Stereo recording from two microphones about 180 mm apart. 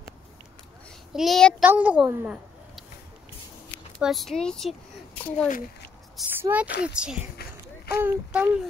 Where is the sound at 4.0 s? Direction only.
Centre (ahead or behind).